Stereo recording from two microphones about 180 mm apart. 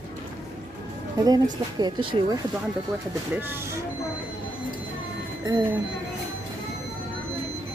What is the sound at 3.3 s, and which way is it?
Speech, 10° right (ahead or behind).